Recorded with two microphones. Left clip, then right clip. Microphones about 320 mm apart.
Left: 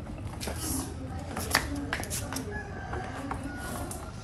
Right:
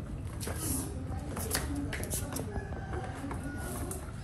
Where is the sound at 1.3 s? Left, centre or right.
Centre.